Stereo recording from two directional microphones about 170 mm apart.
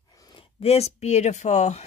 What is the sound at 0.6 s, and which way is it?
Speech, 40° left (ahead or behind).